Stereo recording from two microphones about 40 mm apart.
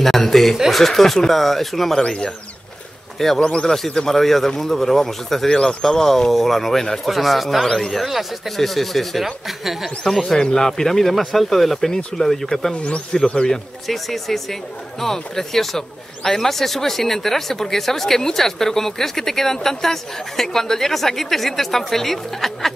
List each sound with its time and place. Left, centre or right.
0.0 s speech: centre
2.0 s speech: left
3.3 s speech: left
3.6 s speech: centre
5.5 s speech: centre
12.7 s speech: left
13.8 s speech: centre